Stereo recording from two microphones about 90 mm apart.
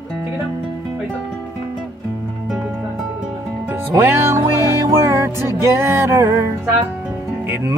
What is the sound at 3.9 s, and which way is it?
Music, 30° right (ahead or behind).